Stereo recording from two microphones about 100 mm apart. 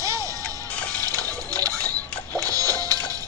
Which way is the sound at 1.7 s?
15° left (ahead or behind).